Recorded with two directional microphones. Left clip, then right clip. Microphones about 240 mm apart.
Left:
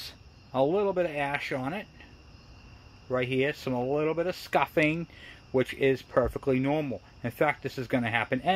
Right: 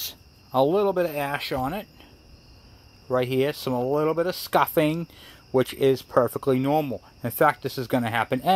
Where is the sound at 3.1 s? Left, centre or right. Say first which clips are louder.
Right 4 dB; right.